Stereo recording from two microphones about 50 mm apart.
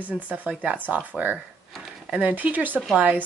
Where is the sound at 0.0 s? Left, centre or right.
Right.